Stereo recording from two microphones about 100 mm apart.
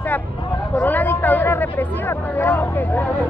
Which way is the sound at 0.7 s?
15° left (ahead or behind).